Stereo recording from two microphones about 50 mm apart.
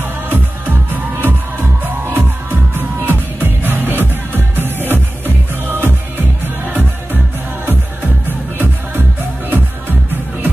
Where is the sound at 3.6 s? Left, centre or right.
Right.